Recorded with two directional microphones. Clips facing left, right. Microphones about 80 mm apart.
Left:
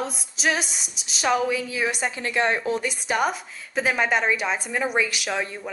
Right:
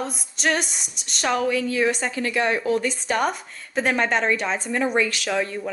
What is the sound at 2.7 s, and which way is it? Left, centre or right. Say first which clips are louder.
A woman's voice: right 3 dB; centre.